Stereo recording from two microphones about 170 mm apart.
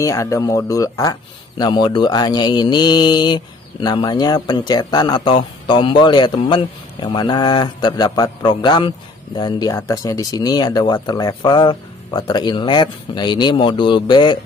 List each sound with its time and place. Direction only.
0.0 s speech: 20° left (ahead or behind)